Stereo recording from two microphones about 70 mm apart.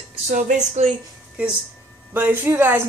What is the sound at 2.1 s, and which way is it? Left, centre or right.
Speech, right.